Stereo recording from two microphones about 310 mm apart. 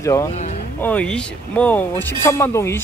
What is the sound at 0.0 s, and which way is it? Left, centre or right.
Speech, centre.